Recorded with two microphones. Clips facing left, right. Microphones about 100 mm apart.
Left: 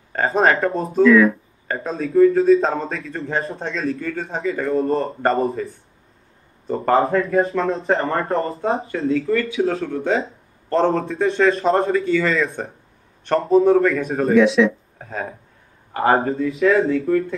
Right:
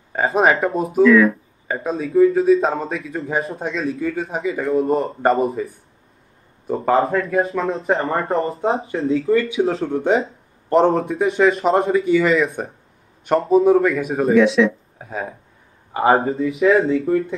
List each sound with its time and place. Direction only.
0.1 s speech: 10° right (ahead or behind)
6.7 s speech: centre (ahead or behind)
9.1 s a man's voice: 30° right (ahead or behind); by 12.0 s centre (ahead or behind)
12.0 s speech: 15° right (ahead or behind)